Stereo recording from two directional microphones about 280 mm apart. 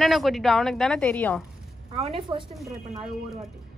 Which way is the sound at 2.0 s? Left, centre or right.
Right.